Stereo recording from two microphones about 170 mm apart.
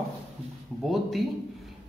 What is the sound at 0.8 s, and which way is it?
Speech, centre (ahead or behind).